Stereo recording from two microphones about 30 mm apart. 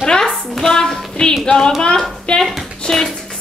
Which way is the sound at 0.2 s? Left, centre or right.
Centre.